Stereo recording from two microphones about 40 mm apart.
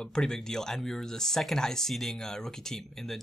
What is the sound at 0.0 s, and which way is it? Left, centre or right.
Speech, centre.